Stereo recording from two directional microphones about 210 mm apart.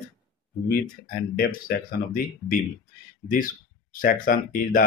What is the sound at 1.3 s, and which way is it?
Speech, 45° left (ahead or behind).